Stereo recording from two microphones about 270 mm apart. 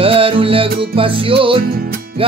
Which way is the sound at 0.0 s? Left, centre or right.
Centre.